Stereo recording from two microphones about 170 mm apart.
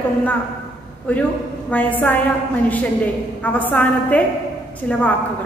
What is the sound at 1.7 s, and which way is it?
Speech, 10° left (ahead or behind).